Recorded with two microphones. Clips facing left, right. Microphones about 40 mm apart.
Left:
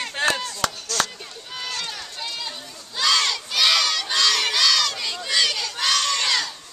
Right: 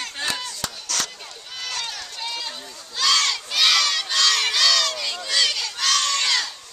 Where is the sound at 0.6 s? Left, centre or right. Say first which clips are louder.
Left 11 dB; left.